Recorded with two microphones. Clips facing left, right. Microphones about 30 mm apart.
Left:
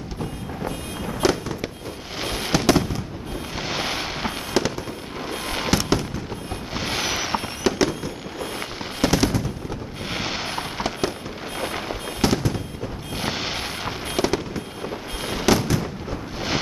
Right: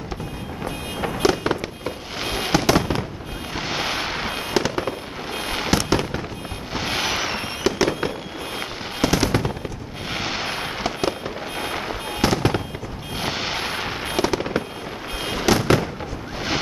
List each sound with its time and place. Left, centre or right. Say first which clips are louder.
1.2 s fireworks: right 2 dB; centre
9.0 s machine gun: even; centre
10.1 s fireworks: right 1 dB; centre
12.4 s fireworks: right 5 dB; right
13.2 s a sound: right 2 dB; centre
13.8 s fireworks: left 1 dB; centre